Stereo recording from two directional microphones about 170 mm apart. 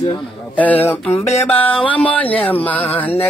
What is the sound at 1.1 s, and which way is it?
Music, 40° left (ahead or behind).